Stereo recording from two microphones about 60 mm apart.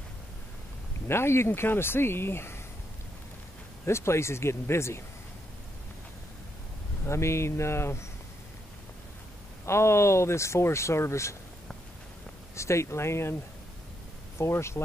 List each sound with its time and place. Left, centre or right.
1.0 s speech: left
3.8 s speech: left
7.1 s speech: left
9.7 s speech: left
12.5 s speech: left
14.4 s speech: left